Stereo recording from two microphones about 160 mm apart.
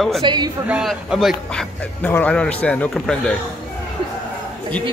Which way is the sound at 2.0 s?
10° left (ahead or behind).